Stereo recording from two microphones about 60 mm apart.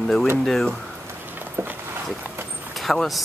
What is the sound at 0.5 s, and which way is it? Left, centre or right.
Speech, centre.